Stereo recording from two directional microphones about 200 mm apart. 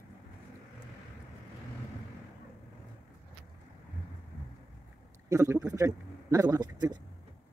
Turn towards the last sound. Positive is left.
turn(degrees=-20)  # may be behind; listen again after turning